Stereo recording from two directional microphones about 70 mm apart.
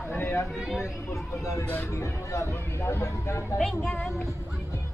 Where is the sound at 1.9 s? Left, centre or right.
Left.